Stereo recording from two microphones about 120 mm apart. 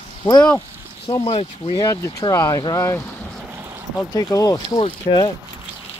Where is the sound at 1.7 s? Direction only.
25° left (ahead or behind).